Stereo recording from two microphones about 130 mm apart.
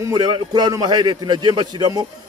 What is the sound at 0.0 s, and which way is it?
A man's voice, 30° right (ahead or behind).